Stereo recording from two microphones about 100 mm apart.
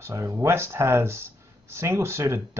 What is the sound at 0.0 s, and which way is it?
Speech, 30° right (ahead or behind).